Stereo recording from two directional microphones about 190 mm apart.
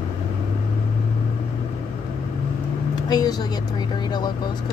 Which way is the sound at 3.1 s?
20° left (ahead or behind).